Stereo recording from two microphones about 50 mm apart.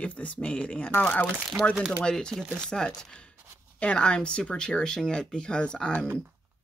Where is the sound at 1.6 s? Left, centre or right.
Left.